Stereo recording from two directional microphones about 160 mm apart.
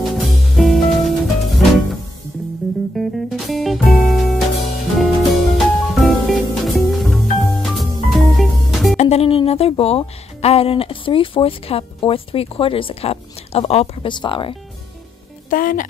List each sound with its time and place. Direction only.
0.1 s music: centre (ahead or behind)
3.0 s music: centre (ahead or behind)
8.9 s speech: 45° left (ahead or behind)
15.5 s speech: 60° left (ahead or behind)